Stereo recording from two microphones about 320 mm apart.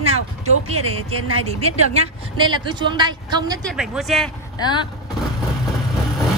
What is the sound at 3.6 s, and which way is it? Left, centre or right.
Speech, centre.